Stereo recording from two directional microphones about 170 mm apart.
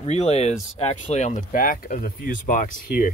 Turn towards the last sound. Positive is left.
turn(degrees=55)  # may be behind; listen again after turning